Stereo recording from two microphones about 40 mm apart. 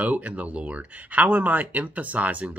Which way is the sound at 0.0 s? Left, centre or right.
Right.